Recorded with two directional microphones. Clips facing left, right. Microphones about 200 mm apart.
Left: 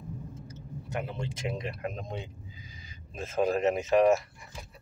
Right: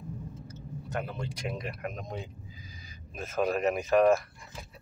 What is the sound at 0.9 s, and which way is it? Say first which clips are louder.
Speech: left 1 dB; 25° left (ahead or behind).